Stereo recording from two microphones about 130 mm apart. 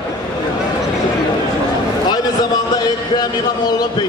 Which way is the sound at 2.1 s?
30° left (ahead or behind).